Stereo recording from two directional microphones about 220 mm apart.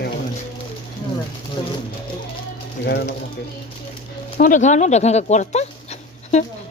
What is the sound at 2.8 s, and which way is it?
Speech, 50° left (ahead or behind).